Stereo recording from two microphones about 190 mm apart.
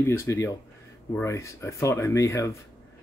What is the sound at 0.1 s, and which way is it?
Speech, 15° left (ahead or behind).